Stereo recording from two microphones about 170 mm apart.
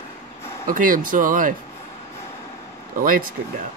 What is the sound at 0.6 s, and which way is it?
Speech, 50° right (ahead or behind).